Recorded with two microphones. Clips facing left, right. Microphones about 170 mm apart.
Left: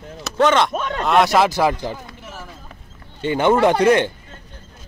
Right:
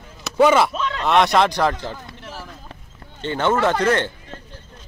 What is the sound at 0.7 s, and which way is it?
Speech, 50° left (ahead or behind).